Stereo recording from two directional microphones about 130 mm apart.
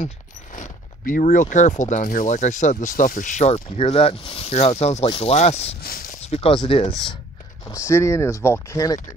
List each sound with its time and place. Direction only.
0.0 s speech: 75° left (ahead or behind); by 7.2 s 45° left (ahead or behind)
7.7 s speech: 20° left (ahead or behind)